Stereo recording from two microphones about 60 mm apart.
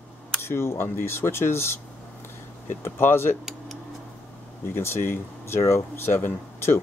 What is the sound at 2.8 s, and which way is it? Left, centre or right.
Speech, left.